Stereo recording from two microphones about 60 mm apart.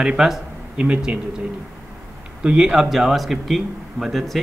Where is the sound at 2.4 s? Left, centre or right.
Centre.